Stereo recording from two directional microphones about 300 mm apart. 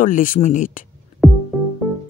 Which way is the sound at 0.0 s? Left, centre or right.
Left.